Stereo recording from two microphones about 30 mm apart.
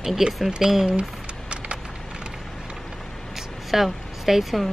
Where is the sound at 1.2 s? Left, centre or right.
Right.